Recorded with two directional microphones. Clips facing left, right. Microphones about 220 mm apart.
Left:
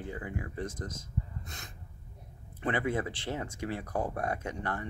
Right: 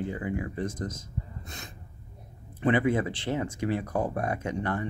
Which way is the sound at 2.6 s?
20° right (ahead or behind).